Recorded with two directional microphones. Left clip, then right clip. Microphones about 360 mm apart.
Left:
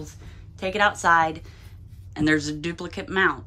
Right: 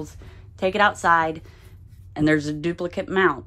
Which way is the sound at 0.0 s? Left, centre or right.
Centre.